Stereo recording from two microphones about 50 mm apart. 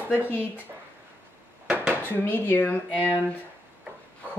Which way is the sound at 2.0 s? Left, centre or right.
Left.